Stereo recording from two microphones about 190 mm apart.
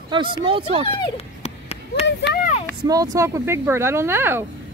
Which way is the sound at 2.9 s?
15° right (ahead or behind).